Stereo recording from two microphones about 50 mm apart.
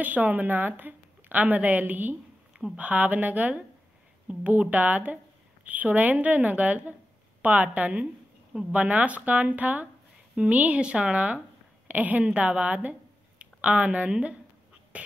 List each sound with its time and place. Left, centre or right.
0.0 s a woman's voice: right